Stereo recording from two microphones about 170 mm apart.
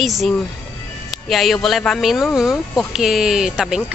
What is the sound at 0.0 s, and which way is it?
Speech, centre (ahead or behind).